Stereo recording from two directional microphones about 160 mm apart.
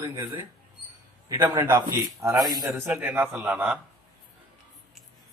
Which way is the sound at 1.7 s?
20° right (ahead or behind).